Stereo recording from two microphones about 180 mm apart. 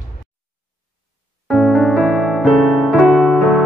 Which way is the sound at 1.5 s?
Centre (ahead or behind).